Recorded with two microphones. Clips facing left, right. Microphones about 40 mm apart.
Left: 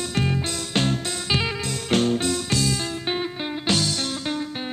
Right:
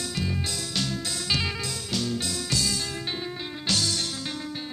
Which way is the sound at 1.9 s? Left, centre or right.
Left.